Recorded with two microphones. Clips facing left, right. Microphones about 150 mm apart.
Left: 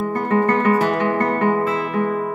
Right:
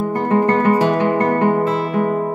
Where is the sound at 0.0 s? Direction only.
20° right (ahead or behind).